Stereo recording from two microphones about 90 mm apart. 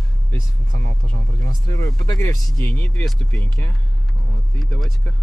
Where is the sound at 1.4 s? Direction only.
35° left (ahead or behind).